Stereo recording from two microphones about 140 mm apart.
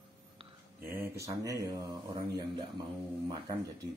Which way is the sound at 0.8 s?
15° right (ahead or behind).